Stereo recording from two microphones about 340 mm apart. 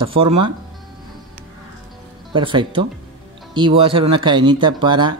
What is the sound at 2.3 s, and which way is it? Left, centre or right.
Speech, centre.